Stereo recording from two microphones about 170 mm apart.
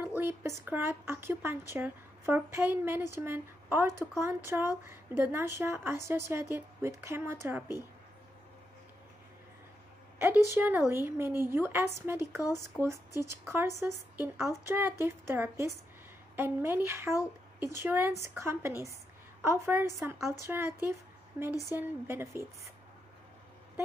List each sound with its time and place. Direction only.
0.0 s speech: 10° right (ahead or behind)
10.2 s speech: 10° right (ahead or behind)